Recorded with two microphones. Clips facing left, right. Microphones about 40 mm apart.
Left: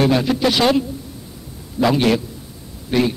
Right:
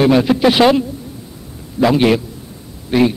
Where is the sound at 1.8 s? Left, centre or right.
Centre.